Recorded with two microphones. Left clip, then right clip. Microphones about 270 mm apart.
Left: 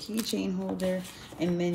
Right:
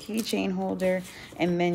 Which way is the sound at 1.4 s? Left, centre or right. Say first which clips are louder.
Right 4 dB; centre.